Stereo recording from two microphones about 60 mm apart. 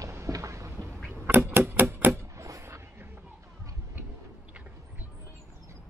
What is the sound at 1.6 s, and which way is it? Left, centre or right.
Typewriter, right.